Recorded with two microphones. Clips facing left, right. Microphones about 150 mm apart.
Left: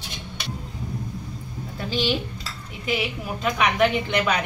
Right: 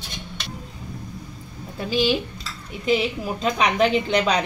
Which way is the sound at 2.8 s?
30° right (ahead or behind).